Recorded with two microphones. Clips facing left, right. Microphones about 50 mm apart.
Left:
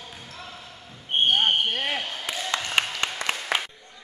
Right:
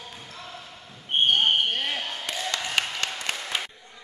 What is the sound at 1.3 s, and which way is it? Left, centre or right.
Basketball bounce, centre.